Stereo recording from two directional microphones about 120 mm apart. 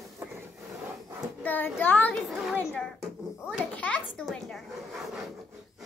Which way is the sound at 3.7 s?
10° left (ahead or behind).